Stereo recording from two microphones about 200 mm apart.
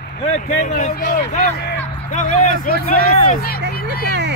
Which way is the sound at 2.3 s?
40° left (ahead or behind).